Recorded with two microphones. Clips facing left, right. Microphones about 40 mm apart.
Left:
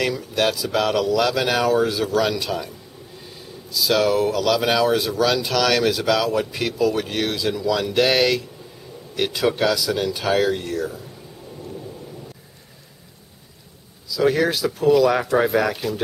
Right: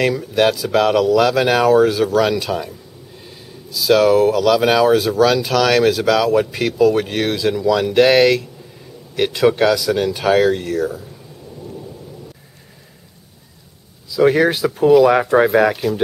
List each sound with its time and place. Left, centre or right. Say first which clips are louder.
0.0 s speech: right 5 dB; centre
3.7 s speech: right 6 dB; centre
14.0 s speech: right 5 dB; right
15.7 s speech: right 6 dB; centre